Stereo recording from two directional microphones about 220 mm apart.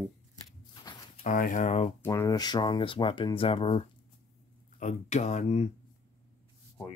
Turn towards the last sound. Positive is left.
turn(degrees=30)  # may be behind; listen again after turning